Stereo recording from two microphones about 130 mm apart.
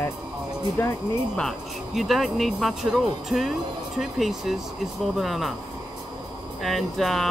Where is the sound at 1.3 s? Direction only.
Centre (ahead or behind).